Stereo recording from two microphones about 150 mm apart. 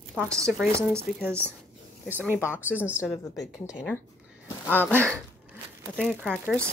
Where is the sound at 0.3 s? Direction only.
20° right (ahead or behind).